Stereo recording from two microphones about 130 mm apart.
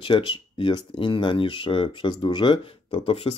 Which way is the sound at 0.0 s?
40° left (ahead or behind).